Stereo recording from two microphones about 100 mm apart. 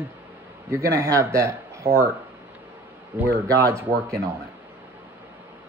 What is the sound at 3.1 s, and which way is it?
Speech, 20° right (ahead or behind).